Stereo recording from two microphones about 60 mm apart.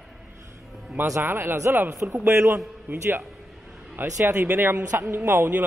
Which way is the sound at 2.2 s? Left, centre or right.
Right.